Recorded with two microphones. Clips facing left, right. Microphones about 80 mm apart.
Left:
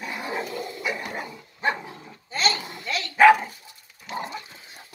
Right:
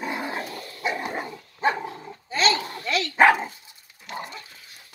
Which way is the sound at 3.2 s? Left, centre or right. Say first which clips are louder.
Left 3 dB; right.